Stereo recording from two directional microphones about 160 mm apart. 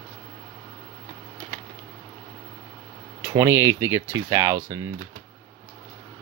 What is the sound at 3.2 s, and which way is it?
Speech, 20° right (ahead or behind).